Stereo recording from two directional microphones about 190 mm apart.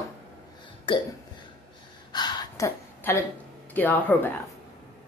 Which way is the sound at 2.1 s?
20° left (ahead or behind).